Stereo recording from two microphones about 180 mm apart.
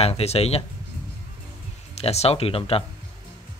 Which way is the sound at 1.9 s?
35° left (ahead or behind).